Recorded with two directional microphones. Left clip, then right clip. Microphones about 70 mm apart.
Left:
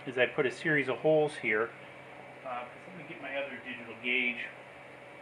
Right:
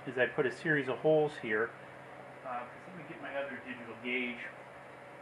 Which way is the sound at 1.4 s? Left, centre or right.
Left.